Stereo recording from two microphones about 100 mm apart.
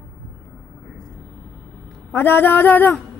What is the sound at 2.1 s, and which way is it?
Speech, 20° left (ahead or behind).